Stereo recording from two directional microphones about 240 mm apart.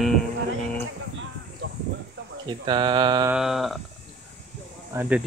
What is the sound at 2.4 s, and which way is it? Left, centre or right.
Mantra, centre.